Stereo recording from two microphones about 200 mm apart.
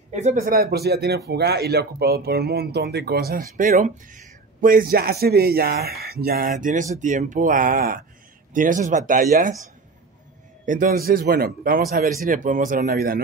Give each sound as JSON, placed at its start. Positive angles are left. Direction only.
{"t": 0.1, "sound": "speech", "side_deg": -35}
{"t": 10.6, "sound": "speech", "side_deg": -40}